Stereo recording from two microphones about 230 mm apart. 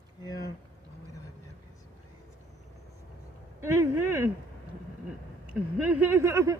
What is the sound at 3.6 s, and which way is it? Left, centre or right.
Speech, centre.